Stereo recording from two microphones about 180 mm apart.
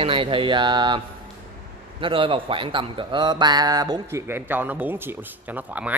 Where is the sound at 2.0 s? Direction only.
30° right (ahead or behind).